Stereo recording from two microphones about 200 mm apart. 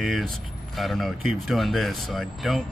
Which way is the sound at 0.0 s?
Centre (ahead or behind).